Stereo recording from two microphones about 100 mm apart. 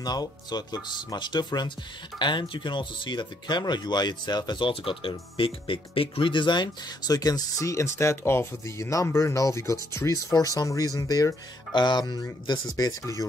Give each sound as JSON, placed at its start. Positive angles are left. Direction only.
{"t": 0.0, "sound": "speech", "side_deg": 45}